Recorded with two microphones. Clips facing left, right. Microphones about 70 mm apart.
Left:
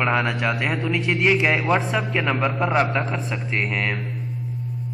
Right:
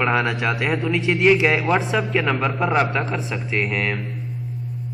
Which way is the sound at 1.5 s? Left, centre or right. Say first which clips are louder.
Right 1 dB; centre.